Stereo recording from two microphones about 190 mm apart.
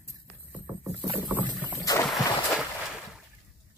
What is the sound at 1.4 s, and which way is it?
Rowboat, 25° right (ahead or behind).